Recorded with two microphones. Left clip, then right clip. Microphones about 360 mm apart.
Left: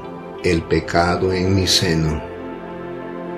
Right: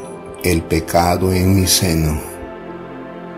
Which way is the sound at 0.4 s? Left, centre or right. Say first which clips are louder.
Even; right.